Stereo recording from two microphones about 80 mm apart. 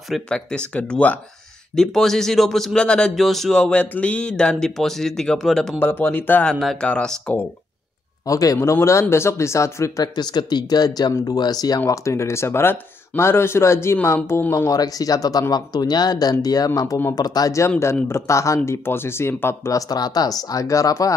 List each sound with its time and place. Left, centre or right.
0.3 s speech: centre
1.8 s speech: centre
5.8 s speech: left
6.6 s speech: centre
8.3 s speech: left
8.5 s speech: left
10.0 s speech: left
11.8 s speech: left
14.7 s speech: left
17.5 s speech: left
19.9 s speech: left